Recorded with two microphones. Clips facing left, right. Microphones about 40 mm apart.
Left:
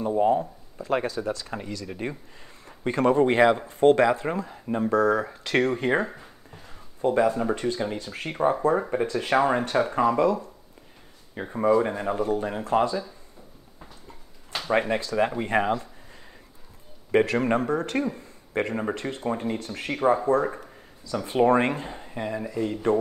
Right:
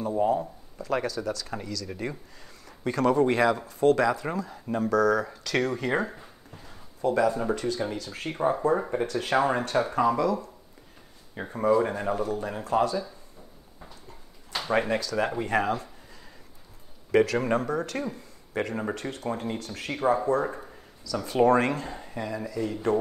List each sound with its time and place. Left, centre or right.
0.0 s speech: left
7.0 s speech: left
11.3 s speech: centre; by 12.9 s left
14.7 s speech: left
17.1 s speech: left
18.1 s a sound: left
18.9 s speech: left
21.9 s a sound: centre
22.2 s speech: left